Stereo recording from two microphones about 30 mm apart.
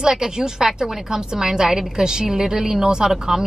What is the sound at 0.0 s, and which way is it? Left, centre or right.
A woman's voice, right.